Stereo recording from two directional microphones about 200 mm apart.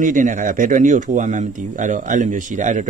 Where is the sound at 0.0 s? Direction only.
40° right (ahead or behind).